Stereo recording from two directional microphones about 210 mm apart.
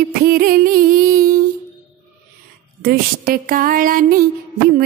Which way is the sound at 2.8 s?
45° right (ahead or behind).